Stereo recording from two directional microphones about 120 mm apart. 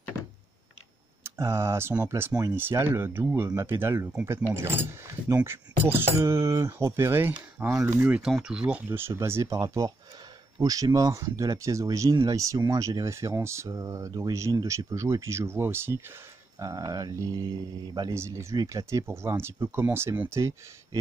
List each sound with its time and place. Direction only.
1.4 s speech: 25° right (ahead or behind); by 18.1 s 40° right (ahead or behind)
18.1 s speech: 20° right (ahead or behind)